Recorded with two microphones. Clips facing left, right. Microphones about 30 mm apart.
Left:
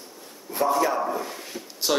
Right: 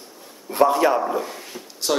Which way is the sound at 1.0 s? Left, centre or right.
Centre.